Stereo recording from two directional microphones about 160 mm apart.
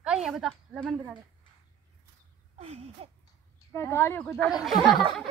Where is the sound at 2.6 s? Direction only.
40° right (ahead or behind).